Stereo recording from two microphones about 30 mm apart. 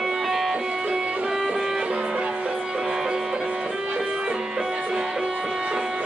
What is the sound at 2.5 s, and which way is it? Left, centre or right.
Music, centre.